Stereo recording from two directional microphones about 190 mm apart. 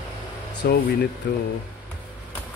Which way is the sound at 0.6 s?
55° left (ahead or behind).